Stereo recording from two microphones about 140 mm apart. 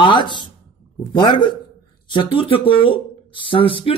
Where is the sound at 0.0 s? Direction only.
35° left (ahead or behind).